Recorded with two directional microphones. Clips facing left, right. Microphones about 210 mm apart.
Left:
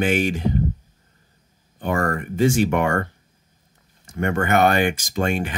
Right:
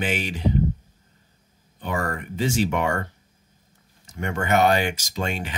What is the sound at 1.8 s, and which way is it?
Speech, 50° left (ahead or behind).